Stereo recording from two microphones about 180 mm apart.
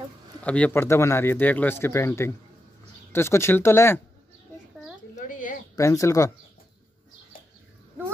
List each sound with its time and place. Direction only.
0.4 s speech: 5° left (ahead or behind)
5.1 s a sound: 45° left (ahead or behind)
5.8 s speech: 15° left (ahead or behind)